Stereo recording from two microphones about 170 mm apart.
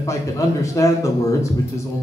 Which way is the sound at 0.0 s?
20° left (ahead or behind).